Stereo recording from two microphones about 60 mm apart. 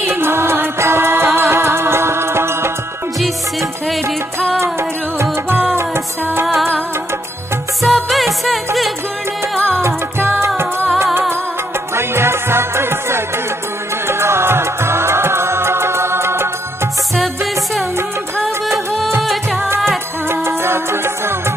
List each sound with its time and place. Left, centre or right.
0.0 s music: right
4.7 s music: right
6.4 s music: centre
7.8 s music: centre
9.8 s music: right
11.9 s music: right
19.2 s music: centre
20.2 s music: right